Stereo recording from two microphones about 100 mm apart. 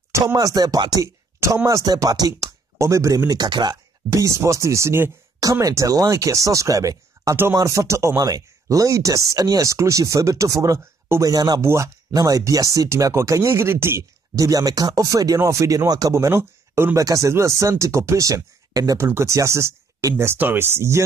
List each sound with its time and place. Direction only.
0.3 s speech: 35° right (ahead or behind)
4.1 s speech: 30° right (ahead or behind)
11.6 s speech: 30° right (ahead or behind)
14.3 s speech: 35° right (ahead or behind)